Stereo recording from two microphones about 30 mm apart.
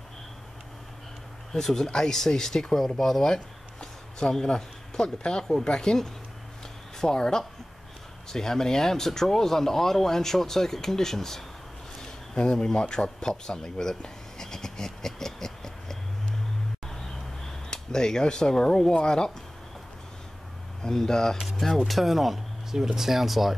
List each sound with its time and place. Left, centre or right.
1.5 s speech: centre
3.3 s a sound: left
5.6 s speech: left
7.0 s speech: left
12.8 s speech: left
14.0 s a sound: centre
17.6 s speech: left
20.8 s speech: centre
21.7 s speech: centre
22.7 s speech: centre